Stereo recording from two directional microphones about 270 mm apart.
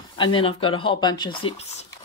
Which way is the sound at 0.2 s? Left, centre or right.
Centre.